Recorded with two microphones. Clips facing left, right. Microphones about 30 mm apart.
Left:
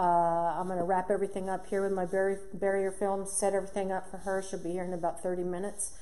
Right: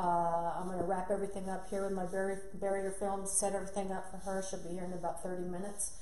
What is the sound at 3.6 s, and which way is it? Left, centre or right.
Speech, left.